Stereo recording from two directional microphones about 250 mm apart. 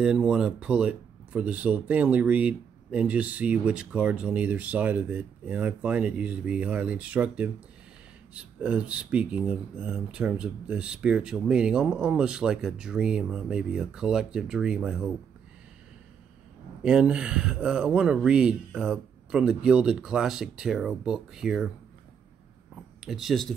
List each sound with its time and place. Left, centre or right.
0.0 s speech: centre
16.8 s speech: centre
23.0 s speech: centre